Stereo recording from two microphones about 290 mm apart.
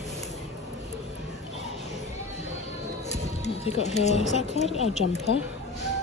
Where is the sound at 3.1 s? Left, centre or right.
Left.